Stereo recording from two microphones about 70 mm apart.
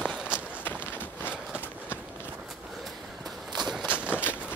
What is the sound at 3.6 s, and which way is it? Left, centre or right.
Walk, centre.